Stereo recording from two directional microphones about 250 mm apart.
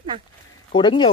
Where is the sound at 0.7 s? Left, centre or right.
Centre.